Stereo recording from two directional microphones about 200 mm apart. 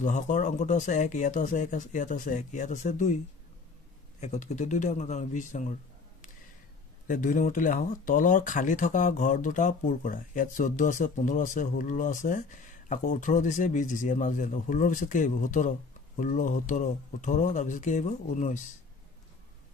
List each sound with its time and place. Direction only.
0.0 s speech: 40° left (ahead or behind)
4.2 s speech: 35° left (ahead or behind)
7.1 s speech: 40° left (ahead or behind)